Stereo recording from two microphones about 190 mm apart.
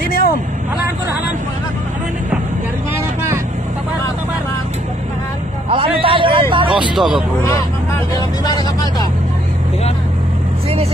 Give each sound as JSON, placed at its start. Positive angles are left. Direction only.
{"t": 0.1, "sound": "vehicle", "side_deg": 50}
{"t": 5.7, "sound": "a sound", "side_deg": -25}
{"t": 6.5, "sound": "vehicle", "side_deg": -25}
{"t": 7.0, "sound": "speech", "side_deg": 0}